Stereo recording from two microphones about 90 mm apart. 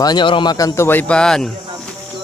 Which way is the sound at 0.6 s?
40° left (ahead or behind).